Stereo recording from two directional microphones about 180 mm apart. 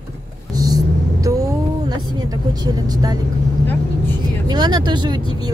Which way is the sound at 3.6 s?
10° left (ahead or behind).